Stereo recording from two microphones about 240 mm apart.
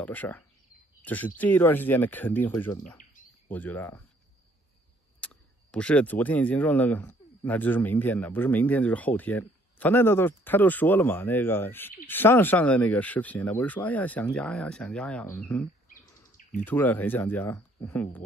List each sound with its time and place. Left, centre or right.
0.0 s speech: centre
5.2 s speech: centre
15.9 s bird vocalization: left
16.6 s speech: centre